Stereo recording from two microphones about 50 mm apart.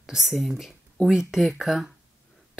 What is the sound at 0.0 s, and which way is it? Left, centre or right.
Speech, centre.